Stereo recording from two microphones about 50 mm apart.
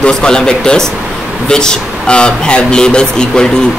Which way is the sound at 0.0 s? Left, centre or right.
Centre.